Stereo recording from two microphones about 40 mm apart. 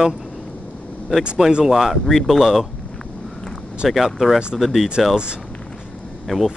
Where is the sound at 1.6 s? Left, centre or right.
Centre.